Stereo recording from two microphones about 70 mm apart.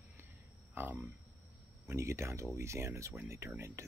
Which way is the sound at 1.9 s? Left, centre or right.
Right.